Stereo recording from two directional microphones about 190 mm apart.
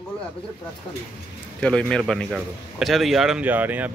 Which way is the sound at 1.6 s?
5° left (ahead or behind).